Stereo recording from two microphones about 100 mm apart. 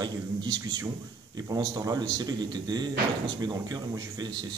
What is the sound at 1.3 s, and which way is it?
A man's voice, 40° right (ahead or behind).